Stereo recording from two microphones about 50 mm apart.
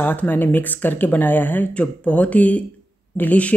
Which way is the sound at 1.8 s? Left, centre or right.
Left.